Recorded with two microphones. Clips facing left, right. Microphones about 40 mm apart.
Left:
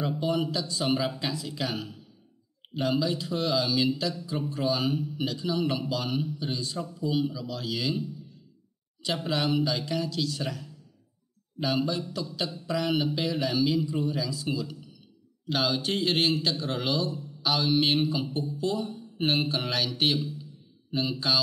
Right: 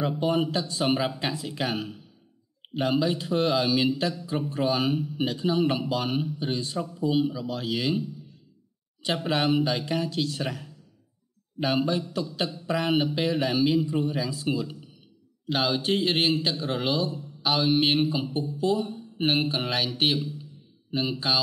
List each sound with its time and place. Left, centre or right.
0.2 s a man's voice: right
6.9 s a man's voice: centre
9.0 s a man's voice: right
12.2 s a man's voice: right
15.4 s speech: centre
18.3 s speech: centre
18.6 s speech: centre